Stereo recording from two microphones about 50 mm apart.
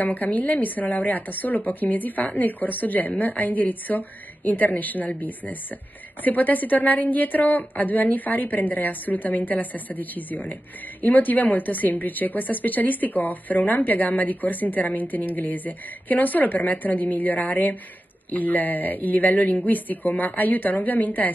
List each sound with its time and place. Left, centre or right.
0.0 s a woman's voice: left